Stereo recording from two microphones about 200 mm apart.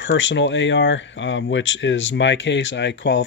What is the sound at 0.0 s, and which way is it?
Speech, 65° left (ahead or behind).